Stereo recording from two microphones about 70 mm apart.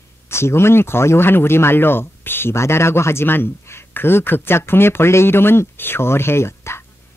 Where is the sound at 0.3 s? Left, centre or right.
Left.